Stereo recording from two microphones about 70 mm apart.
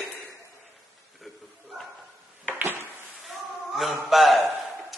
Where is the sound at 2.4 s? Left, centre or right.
Right.